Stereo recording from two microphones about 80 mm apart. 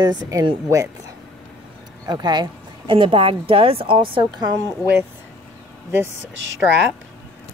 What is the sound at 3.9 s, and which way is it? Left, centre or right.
Speech, right.